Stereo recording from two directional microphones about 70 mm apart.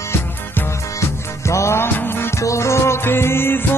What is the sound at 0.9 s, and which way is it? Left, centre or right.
Music, left.